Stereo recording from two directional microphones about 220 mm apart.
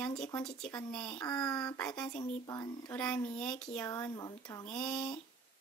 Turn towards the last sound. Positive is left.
turn(degrees=5)  # may be behind; listen again after turning